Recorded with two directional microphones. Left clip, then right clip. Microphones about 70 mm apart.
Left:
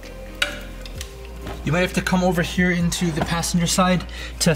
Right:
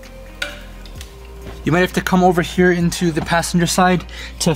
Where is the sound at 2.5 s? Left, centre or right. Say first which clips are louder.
Right 6 dB; right.